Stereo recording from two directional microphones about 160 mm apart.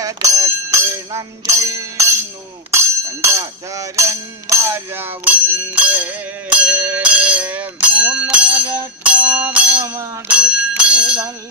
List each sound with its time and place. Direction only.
0.0 s music: 20° right (ahead or behind)
2.7 s a sound: 15° right (ahead or behind)
9.0 s music: 10° right (ahead or behind)
10.2 s bell: 5° right (ahead or behind)